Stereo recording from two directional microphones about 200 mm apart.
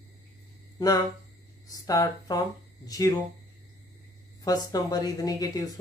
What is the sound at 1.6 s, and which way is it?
Speech, 20° left (ahead or behind).